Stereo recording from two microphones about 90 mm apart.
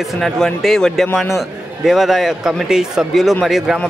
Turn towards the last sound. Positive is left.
turn(degrees=-5)  # may be behind; listen again after turning